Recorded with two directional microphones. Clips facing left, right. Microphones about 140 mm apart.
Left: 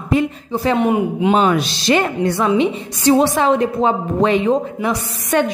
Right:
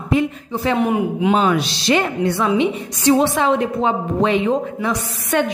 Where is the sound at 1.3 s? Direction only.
45° left (ahead or behind).